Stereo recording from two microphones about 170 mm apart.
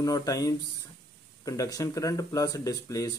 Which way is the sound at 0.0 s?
20° left (ahead or behind).